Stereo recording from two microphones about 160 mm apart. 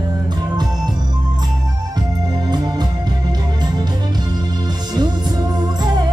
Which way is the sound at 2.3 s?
25° right (ahead or behind).